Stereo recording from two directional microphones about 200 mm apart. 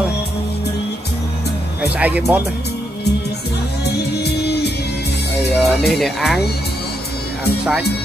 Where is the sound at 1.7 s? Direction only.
5° right (ahead or behind).